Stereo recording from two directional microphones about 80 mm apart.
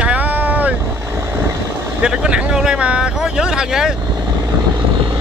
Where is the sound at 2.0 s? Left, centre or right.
Centre.